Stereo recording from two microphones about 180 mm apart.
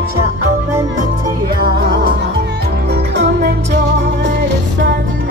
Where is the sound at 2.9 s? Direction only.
70° right (ahead or behind).